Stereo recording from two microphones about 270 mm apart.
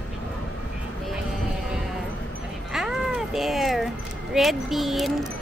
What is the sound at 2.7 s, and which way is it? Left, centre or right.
Music, centre.